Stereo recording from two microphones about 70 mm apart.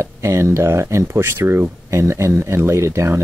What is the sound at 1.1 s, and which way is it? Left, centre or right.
Speech, right.